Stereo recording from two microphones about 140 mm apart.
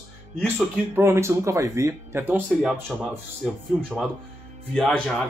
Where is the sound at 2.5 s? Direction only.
Centre (ahead or behind).